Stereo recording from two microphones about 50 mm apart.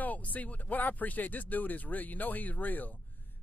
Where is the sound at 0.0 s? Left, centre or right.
Left.